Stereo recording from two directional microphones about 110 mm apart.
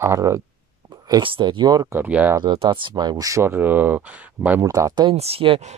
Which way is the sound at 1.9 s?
15° right (ahead or behind).